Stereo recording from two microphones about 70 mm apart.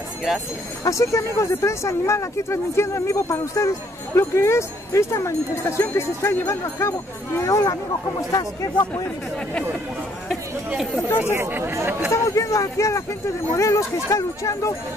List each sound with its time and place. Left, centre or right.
0.8 s speech: left
8.3 s speech: left
11.2 s speech: right
12.1 s speech: left